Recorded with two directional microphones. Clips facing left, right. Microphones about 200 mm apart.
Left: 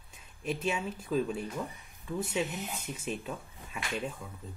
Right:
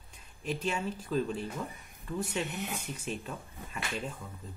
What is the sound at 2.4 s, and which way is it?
Speech, 60° right (ahead or behind).